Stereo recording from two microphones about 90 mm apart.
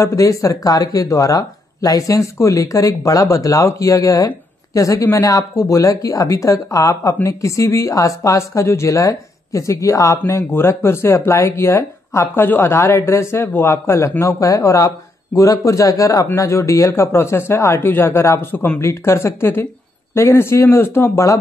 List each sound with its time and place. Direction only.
0.0 s speech: 40° left (ahead or behind)